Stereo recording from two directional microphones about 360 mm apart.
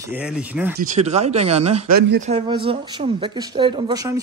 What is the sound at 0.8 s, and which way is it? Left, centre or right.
A man's voice, centre.